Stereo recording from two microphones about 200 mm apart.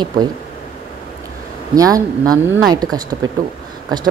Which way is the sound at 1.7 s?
15° right (ahead or behind).